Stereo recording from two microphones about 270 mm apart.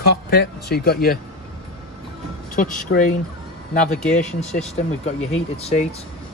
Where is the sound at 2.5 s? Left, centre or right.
Left.